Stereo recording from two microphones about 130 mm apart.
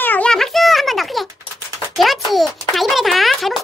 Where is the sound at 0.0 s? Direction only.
15° left (ahead or behind).